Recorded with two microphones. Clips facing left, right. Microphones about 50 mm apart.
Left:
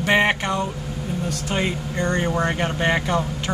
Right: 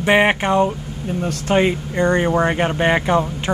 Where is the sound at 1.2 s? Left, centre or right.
Right.